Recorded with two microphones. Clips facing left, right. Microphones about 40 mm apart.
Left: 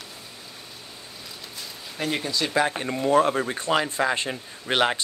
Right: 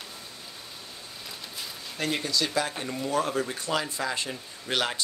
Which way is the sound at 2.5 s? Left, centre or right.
Left.